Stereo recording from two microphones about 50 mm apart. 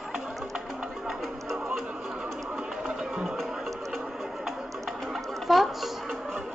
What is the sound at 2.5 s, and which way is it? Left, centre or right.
Music, centre.